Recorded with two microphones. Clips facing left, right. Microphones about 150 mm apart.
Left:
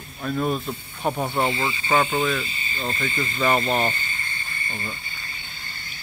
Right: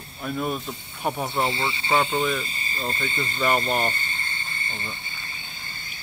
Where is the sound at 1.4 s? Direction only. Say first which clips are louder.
Left 1 dB; 30° right (ahead or behind).